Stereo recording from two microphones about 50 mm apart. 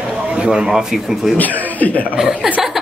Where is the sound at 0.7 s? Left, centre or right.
Centre.